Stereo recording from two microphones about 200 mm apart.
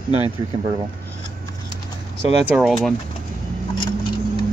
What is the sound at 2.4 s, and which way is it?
Speech, centre (ahead or behind).